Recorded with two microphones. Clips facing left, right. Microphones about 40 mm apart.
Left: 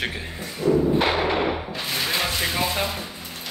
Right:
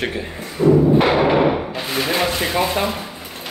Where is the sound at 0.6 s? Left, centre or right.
Right.